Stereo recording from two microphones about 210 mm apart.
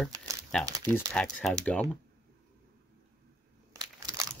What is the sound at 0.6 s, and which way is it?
Speech, 15° right (ahead or behind).